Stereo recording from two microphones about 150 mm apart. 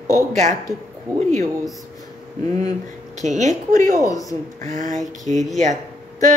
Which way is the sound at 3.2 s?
55° right (ahead or behind).